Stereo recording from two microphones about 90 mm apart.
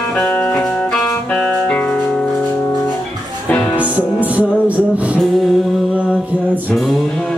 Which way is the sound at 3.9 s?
15° right (ahead or behind).